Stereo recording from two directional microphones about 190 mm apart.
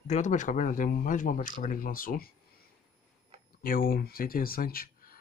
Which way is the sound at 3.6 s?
50° left (ahead or behind).